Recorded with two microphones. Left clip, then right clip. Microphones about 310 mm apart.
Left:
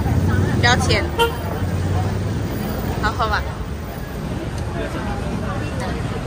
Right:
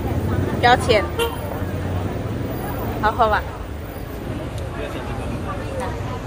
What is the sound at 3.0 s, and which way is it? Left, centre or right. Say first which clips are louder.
Speech: right 4 dB; centre.